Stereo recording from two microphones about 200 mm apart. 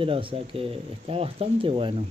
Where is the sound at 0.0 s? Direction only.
25° right (ahead or behind).